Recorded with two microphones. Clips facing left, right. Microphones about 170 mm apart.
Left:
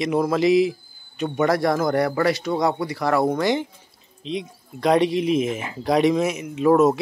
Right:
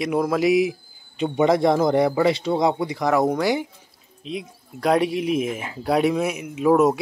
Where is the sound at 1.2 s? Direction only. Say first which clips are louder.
Right 2 dB; 20° right (ahead or behind).